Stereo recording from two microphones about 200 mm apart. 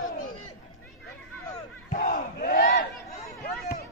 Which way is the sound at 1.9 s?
40° left (ahead or behind).